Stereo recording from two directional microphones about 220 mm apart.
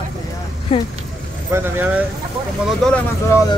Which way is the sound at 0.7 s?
30° left (ahead or behind).